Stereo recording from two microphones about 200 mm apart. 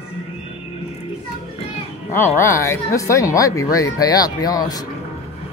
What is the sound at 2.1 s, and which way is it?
Speech, 10° left (ahead or behind).